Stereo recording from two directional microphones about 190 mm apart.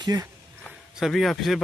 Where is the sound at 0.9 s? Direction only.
Centre (ahead or behind).